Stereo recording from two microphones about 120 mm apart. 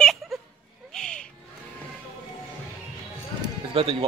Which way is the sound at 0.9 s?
5° left (ahead or behind).